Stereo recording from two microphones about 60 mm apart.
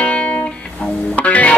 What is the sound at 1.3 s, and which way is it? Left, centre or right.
Music, left.